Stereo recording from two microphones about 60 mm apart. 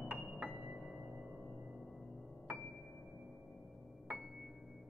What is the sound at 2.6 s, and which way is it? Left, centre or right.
Music, centre.